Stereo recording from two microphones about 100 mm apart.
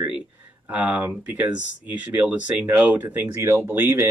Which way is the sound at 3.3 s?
30° right (ahead or behind).